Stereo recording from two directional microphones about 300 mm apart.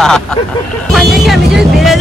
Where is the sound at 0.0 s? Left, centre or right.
Centre.